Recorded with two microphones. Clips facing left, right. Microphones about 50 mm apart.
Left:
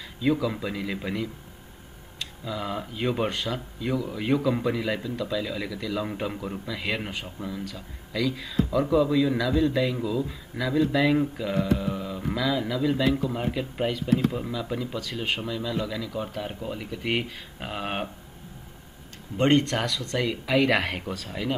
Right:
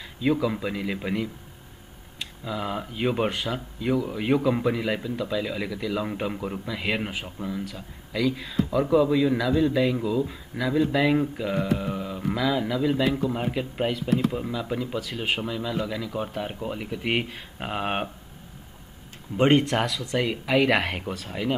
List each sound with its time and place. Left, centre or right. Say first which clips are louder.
0.2 s speech: right 1 dB; centre
19.3 s speech: right 2 dB; centre